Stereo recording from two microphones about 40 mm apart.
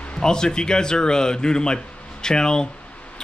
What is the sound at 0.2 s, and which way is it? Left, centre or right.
Speech, centre.